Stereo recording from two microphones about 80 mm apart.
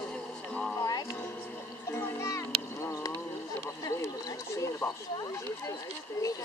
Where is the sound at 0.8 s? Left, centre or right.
Left.